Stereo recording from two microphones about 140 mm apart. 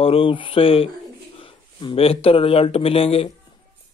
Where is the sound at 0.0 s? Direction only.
40° left (ahead or behind).